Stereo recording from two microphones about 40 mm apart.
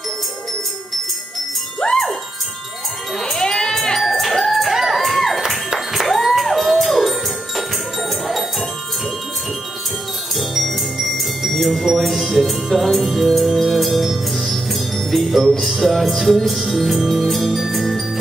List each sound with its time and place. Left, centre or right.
1.8 s chime: centre
3.3 s sheep: centre
4.0 s music: centre
10.3 s music: centre
15.6 s speech: centre
16.3 s music: centre